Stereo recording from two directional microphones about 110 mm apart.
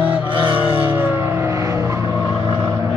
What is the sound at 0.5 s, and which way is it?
Vehicle, 15° right (ahead or behind).